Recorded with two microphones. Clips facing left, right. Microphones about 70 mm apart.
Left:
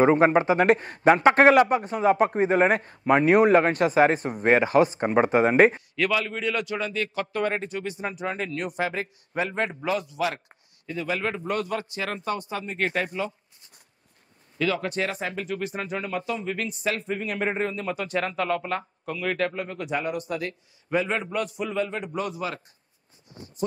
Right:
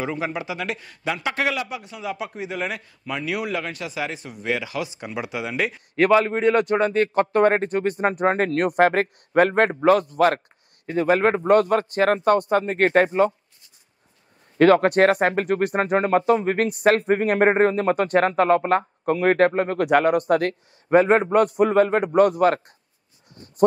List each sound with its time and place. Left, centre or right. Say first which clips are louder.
0.0 s a man's voice: left 9 dB; left
5.9 s speech: right 8 dB; right
14.6 s speech: right 12 dB; right